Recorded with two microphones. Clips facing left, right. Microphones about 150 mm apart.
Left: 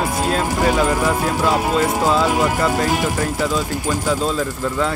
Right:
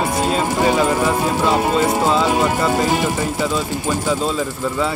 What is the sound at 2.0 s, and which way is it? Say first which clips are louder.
Speech: even; 5° left (ahead or behind).